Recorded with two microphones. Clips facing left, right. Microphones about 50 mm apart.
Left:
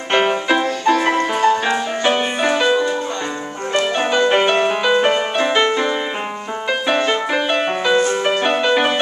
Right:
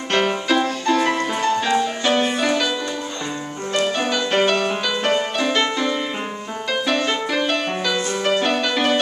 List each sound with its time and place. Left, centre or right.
0.1 s music: left